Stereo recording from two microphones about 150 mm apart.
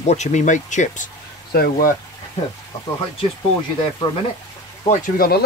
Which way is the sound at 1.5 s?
75° left (ahead or behind).